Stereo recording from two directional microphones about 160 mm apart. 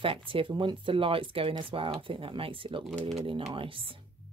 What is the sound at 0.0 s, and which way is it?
Speech, 35° right (ahead or behind).